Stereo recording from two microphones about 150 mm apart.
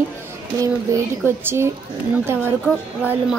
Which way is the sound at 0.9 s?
20° right (ahead or behind).